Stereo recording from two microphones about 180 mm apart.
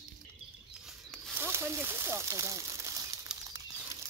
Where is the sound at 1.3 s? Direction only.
15° right (ahead or behind).